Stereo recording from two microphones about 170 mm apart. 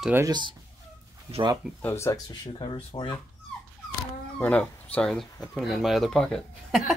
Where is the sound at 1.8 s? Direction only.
15° left (ahead or behind).